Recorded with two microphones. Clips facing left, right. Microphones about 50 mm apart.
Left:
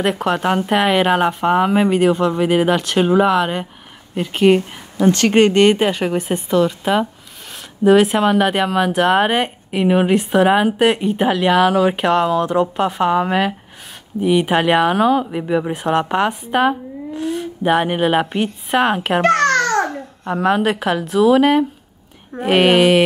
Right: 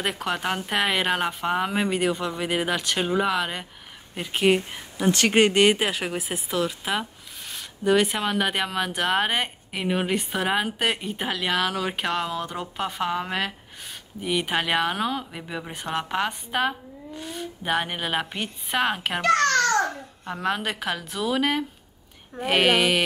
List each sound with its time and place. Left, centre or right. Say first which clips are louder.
0.0 s speech: left 9 dB; centre
5.1 s speech: left 5 dB; centre
15.7 s speech: left 10 dB; centre
19.2 s babbling: left 4 dB; left
20.2 s speech: left 10 dB; centre